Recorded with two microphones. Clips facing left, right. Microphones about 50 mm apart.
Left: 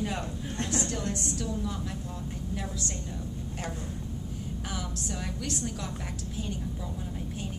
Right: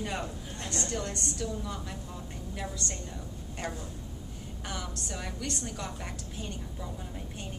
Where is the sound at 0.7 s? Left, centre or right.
Centre.